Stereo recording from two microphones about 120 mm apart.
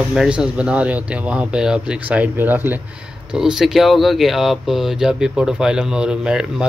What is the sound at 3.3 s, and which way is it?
A man's voice, 5° right (ahead or behind).